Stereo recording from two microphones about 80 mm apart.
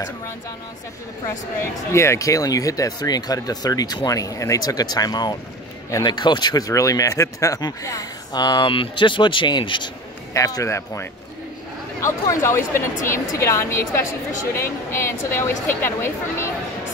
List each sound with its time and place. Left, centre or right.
1.6 s speech: left
10.3 s a woman's voice: left